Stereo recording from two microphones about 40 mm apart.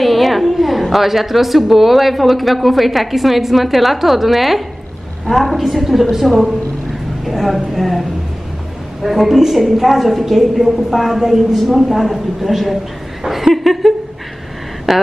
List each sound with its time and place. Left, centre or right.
0.0 s a woman's voice: centre
13.2 s a sound: centre
14.9 s a woman's voice: centre